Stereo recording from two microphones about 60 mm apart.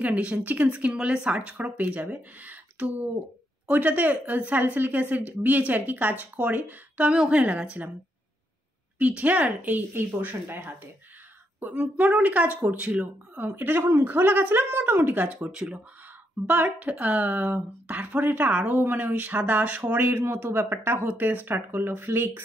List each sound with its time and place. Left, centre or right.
0.0 s a woman's voice: right
8.9 s a woman's voice: right
11.6 s a woman's voice: right
13.0 s speech: right
15.4 s speech: centre
16.4 s a woman's voice: right